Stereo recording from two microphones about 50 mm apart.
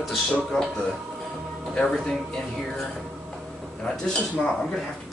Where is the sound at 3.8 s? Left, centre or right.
Centre.